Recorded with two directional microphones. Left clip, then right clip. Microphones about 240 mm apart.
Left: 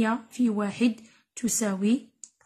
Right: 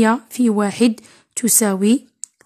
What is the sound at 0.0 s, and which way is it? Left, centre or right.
A woman's voice, right.